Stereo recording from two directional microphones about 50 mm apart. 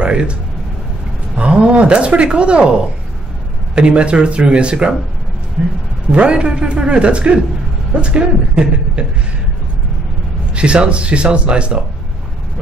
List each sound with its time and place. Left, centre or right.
0.0 s speech: right
10.5 s speech: right